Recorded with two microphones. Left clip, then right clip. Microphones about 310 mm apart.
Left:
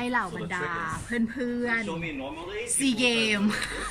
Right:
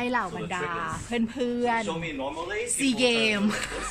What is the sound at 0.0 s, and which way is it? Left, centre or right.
A woman's voice, centre.